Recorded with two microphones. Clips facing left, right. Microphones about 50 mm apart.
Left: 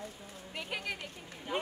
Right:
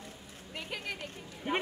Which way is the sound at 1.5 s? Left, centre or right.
Right.